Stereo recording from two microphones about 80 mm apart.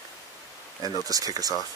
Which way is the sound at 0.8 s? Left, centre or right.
Right.